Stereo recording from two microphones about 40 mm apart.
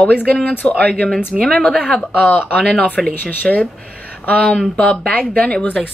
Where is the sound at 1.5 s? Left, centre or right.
Centre.